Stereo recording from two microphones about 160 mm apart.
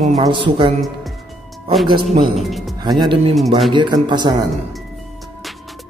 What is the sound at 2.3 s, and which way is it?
Speech, centre (ahead or behind).